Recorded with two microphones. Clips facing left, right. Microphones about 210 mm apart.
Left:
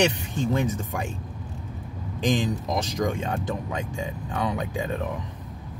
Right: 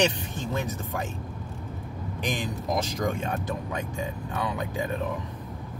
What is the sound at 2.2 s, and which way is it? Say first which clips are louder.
Speech: left 6 dB; 15° left (ahead or behind).